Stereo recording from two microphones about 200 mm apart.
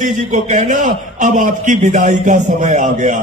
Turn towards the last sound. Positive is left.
turn(degrees=-40)  # may be behind; listen again after turning